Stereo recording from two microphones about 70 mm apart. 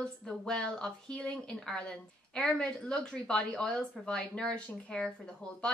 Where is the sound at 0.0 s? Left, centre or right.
Centre.